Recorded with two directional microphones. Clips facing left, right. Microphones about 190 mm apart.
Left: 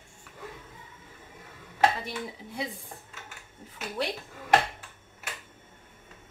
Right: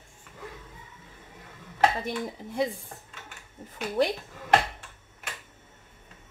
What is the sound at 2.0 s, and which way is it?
Speech, 45° right (ahead or behind).